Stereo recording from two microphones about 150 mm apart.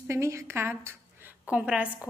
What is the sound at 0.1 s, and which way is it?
A woman's voice, 20° right (ahead or behind).